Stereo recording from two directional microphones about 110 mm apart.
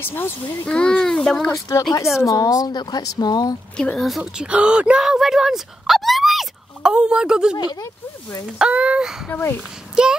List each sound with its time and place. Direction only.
0.0 s speech: 20° left (ahead or behind)
0.7 s speech: 10° left (ahead or behind)
1.5 s speech: 30° left (ahead or behind)
3.7 s speech: 10° left (ahead or behind)
4.2 s speech: 10° right (ahead or behind)
7.5 s speech: 40° left (ahead or behind)
7.8 s speech: 30° left (ahead or behind)
8.5 s speech: 10° right (ahead or behind)
9.3 s speech: 20° left (ahead or behind)
10.0 s speech: 5° right (ahead or behind)